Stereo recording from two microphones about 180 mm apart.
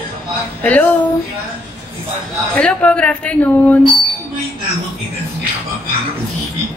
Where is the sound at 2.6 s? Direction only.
5° left (ahead or behind).